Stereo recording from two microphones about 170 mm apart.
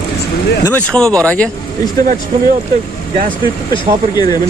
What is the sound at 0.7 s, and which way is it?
Speech, 10° left (ahead or behind).